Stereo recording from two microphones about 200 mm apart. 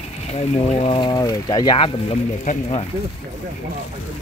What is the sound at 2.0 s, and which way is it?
Speech, 35° left (ahead or behind).